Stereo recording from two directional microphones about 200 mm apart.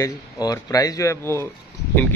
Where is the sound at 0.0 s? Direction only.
15° left (ahead or behind).